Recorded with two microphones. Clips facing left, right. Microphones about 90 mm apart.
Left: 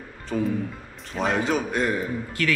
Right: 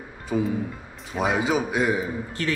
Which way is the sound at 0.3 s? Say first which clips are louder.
Right 1 dB; 10° right (ahead or behind).